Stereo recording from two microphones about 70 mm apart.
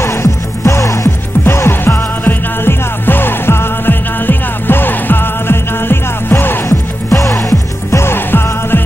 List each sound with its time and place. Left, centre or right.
0.0 s music: left
1.4 s music: left
6.7 s music: left